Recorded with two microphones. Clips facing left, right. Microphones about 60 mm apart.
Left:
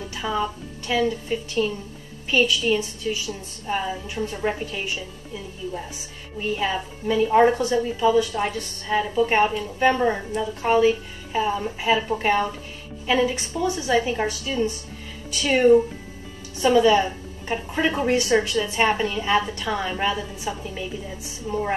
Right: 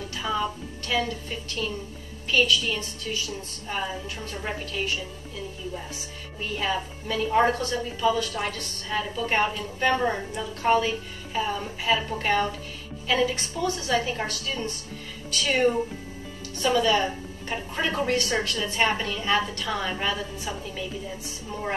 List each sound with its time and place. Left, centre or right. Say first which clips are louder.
0.1 s a woman's voice: left 2 dB; centre
6.5 s a woman's voice: left 2 dB; centre
11.3 s a woman's voice: left 5 dB; centre
16.6 s a woman's voice: left 5 dB; centre